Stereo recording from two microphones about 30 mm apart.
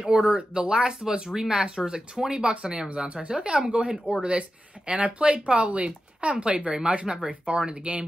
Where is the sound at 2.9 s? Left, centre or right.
Right.